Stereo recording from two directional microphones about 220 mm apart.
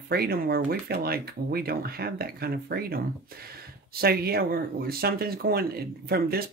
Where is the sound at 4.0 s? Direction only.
45° right (ahead or behind).